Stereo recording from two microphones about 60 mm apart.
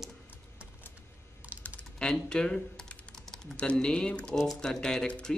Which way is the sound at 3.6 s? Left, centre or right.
Centre.